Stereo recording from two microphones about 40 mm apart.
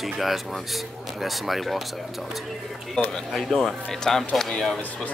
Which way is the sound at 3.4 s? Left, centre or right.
Centre.